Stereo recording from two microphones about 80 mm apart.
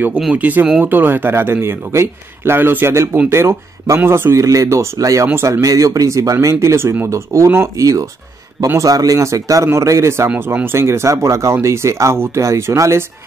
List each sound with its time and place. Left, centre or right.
0.3 s a man's voice: centre; by 13.0 s right